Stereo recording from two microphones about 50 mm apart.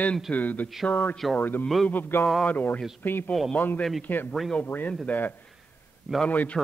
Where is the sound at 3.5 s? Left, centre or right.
Left.